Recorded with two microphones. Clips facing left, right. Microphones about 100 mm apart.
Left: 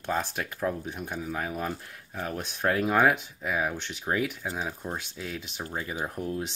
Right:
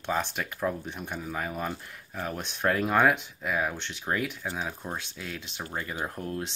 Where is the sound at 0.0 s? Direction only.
Centre (ahead or behind).